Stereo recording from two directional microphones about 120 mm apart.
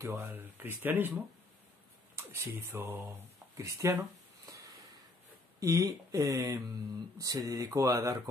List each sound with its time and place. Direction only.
0.0 s speech: 25° right (ahead or behind)
2.1 s speech: 20° right (ahead or behind)
5.6 s speech: 30° right (ahead or behind)